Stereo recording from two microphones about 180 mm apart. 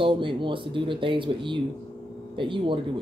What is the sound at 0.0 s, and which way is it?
Speech, 25° right (ahead or behind).